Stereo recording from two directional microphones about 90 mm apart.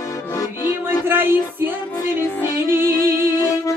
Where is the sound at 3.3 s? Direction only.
40° left (ahead or behind).